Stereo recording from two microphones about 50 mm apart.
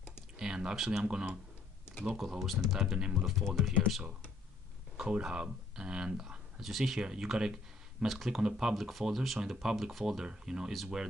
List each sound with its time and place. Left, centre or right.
0.4 s speech: centre
1.0 s speech: right
2.1 s speech: centre
3.3 s speech: centre
4.9 s speech: centre
7.0 s speech: centre
8.4 s speech: centre
8.7 s speech: centre
9.4 s speech: centre